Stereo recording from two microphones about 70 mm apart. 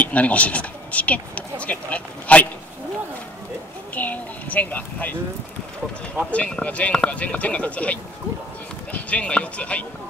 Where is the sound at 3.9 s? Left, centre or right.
Left.